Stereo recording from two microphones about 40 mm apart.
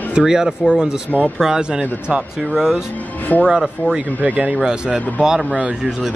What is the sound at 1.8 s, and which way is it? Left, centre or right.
Speech, right.